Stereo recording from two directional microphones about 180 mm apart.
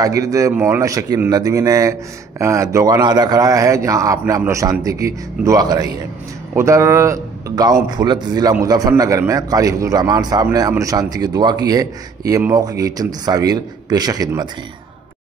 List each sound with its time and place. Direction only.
0.0 s a man's voice: 20° right (ahead or behind)